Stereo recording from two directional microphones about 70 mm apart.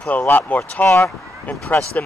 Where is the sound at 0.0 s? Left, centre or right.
Left.